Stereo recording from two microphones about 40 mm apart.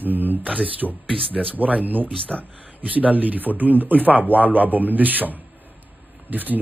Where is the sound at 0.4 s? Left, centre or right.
Right.